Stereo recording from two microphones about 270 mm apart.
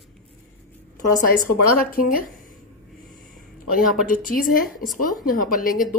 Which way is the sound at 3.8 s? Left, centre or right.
Left.